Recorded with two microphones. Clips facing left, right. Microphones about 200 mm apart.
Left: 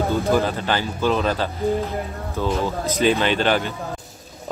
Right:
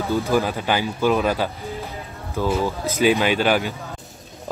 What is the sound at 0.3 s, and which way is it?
Speech, 15° right (ahead or behind).